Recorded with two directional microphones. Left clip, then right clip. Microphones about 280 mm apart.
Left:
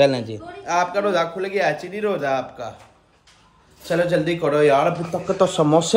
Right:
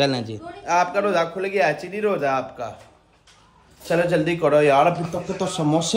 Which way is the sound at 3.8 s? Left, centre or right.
Centre.